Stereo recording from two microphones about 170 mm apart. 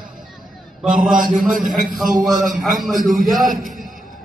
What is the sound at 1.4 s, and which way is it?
Speech, 50° right (ahead or behind).